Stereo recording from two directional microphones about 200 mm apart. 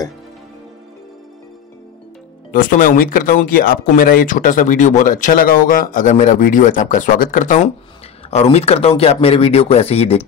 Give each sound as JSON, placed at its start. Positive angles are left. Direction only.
{"t": 2.5, "sound": "speech", "side_deg": 45}